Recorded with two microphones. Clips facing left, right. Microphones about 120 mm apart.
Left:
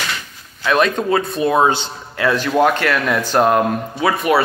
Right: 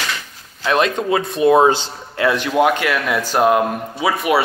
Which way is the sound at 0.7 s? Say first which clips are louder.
Left 1 dB; 25° right (ahead or behind).